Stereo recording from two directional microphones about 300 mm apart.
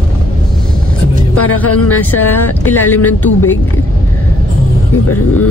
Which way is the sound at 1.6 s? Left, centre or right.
Centre.